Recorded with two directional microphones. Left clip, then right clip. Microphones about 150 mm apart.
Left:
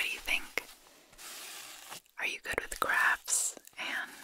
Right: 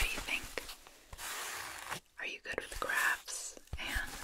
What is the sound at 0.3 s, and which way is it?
Whispering, 35° left (ahead or behind).